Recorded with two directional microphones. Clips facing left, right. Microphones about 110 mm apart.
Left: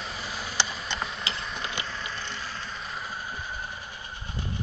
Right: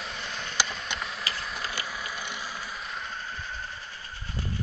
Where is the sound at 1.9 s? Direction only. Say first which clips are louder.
Even; 10° right (ahead or behind).